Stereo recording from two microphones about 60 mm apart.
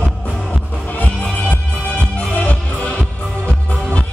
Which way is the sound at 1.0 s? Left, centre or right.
Left.